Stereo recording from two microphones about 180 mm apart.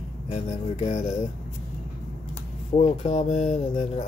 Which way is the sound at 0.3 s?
40° left (ahead or behind).